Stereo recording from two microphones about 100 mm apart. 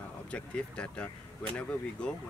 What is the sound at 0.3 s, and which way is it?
Speech, 10° left (ahead or behind).